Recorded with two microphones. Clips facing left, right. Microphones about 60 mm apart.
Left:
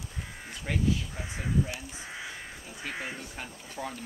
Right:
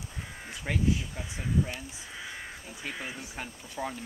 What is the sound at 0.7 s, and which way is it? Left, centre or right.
Speech, centre.